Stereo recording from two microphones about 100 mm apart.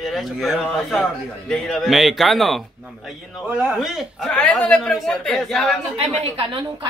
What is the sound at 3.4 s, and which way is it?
Speech, 15° right (ahead or behind).